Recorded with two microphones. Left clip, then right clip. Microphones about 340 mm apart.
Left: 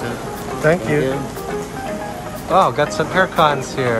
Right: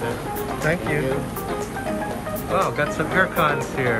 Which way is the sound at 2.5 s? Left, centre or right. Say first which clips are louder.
Left 7 dB; centre.